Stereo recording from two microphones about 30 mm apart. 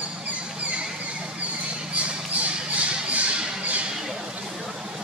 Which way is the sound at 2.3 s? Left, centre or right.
Right.